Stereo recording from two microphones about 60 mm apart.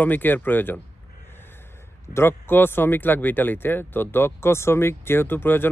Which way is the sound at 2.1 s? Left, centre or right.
Left.